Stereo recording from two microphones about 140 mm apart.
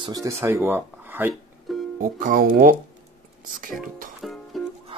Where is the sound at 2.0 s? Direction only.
85° right.